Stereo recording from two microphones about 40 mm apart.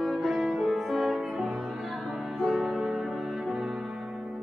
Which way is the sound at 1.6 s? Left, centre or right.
Centre.